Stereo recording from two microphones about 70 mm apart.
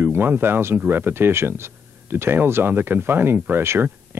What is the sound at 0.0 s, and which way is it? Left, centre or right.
Speech, right.